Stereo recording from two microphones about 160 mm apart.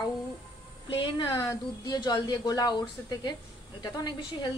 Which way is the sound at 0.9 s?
30° left (ahead or behind).